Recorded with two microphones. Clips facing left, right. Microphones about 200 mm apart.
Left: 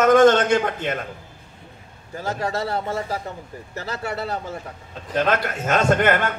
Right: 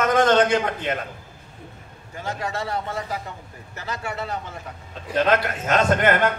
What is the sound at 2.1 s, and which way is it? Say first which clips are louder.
A man's voice: left 3 dB; 40° left (ahead or behind).